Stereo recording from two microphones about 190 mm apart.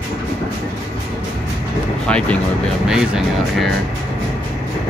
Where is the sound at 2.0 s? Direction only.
5° left (ahead or behind).